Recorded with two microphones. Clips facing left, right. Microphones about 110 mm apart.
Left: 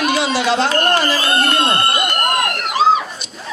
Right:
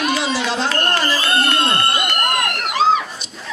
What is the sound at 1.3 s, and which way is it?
Speech, 50° left (ahead or behind).